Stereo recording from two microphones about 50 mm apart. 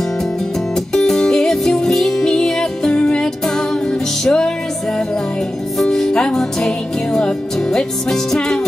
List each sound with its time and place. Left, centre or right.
0.9 s music: centre
5.9 s music: centre